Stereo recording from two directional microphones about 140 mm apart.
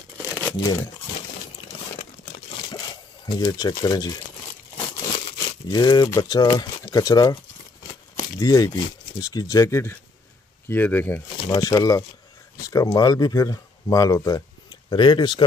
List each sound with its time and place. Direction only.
0.4 s crumpling: 15° left (ahead or behind)
3.3 s speech: 30° left (ahead or behind)
5.7 s speech: 30° left (ahead or behind)
8.4 s speech: 25° left (ahead or behind)
11.3 s speech: 35° left (ahead or behind)